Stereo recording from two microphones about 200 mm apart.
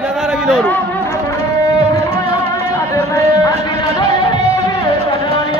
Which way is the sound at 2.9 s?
15° left (ahead or behind).